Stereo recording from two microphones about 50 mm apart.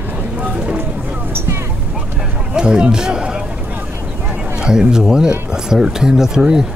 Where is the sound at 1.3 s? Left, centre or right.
Right.